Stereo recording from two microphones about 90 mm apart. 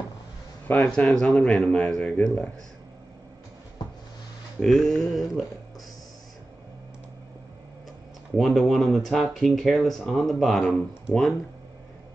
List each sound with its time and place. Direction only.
0.7 s speech: 5° left (ahead or behind)
4.6 s speech: centre (ahead or behind)
8.4 s speech: centre (ahead or behind)